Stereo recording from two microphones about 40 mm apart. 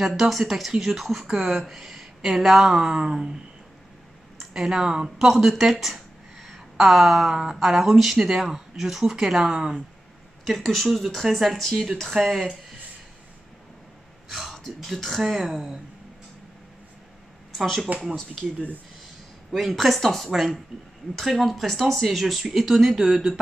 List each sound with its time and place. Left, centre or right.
0.0 s speech: centre
1.7 s speech: centre
2.7 s speech: centre
4.4 s speech: centre
6.4 s a sound: centre
7.5 s speech: centre
10.4 s speech: centre
14.4 s a sound: centre
14.9 s speech: centre
15.2 s speech: centre
17.9 s speech: right
19.8 s speech: centre